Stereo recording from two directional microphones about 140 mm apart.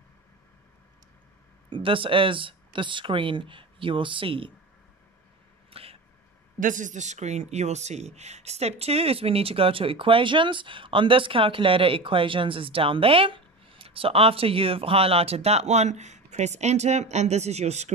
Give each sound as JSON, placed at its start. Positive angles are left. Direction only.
{"t": 1.7, "sound": "speech", "side_deg": -40}
{"t": 5.7, "sound": "a sound", "side_deg": -45}
{"t": 6.6, "sound": "speech", "side_deg": -65}